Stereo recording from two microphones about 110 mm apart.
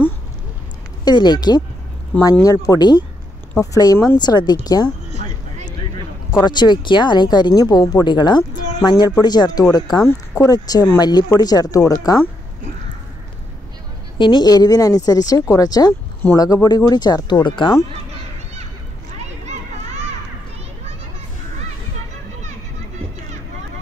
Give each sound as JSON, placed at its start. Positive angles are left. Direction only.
{"t": 1.0, "sound": "speech", "side_deg": 40}
{"t": 6.4, "sound": "speech", "side_deg": 40}
{"t": 14.1, "sound": "speech", "side_deg": 45}